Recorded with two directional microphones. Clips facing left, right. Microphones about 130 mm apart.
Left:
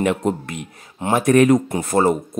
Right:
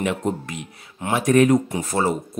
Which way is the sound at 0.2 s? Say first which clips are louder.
Left 3 dB; 80° left.